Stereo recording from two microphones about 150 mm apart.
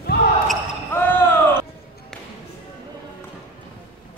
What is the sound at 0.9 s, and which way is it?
Basketball bounce, 15° left (ahead or behind).